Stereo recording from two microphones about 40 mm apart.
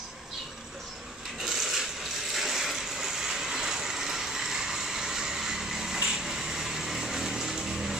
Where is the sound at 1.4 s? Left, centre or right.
Centre.